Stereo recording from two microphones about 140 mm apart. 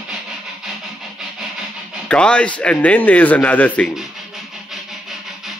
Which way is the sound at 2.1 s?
10° left (ahead or behind).